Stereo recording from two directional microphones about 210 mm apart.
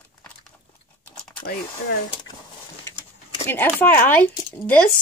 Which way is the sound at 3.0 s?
30° left (ahead or behind).